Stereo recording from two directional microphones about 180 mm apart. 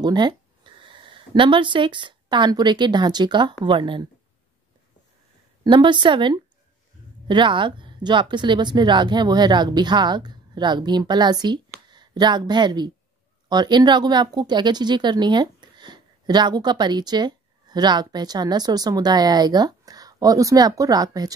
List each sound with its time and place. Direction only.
0.0 s speech: 25° right (ahead or behind)
5.6 s speech: 25° right (ahead or behind)